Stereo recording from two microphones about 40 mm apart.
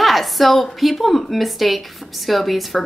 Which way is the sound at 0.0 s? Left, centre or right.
Centre.